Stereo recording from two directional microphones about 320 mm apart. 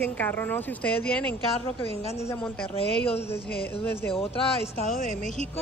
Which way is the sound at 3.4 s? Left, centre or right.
Left.